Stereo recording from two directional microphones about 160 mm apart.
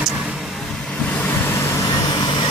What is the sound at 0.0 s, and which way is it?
Vehicle, 5° right (ahead or behind).